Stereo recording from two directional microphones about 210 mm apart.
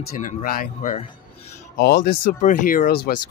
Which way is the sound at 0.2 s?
40° left (ahead or behind).